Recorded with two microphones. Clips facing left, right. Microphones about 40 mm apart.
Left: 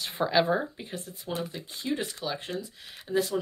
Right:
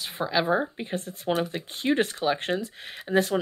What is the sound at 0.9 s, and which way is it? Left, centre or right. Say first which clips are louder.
Speech: right 8 dB; right.